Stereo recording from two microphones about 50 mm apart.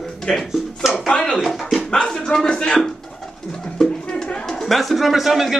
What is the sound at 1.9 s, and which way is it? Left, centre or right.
Speech, centre.